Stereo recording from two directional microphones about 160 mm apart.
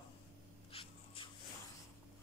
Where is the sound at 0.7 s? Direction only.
35° left (ahead or behind).